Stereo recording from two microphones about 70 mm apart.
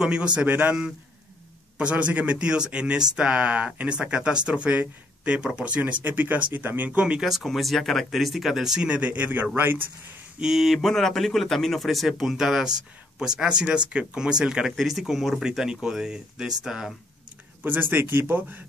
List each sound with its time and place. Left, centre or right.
0.0 s speech: centre
0.5 s speech: right
1.8 s speech: centre
7.2 s speech: centre; by 9.8 s right
10.4 s speech: centre
17.6 s speech: right